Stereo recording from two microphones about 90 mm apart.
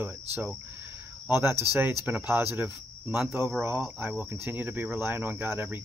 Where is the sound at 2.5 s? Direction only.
20° right (ahead or behind).